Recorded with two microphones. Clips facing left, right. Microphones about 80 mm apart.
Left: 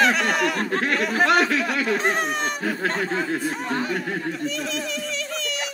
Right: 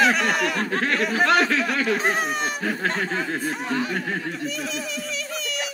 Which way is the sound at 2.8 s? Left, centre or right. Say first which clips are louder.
Left 1 dB; left.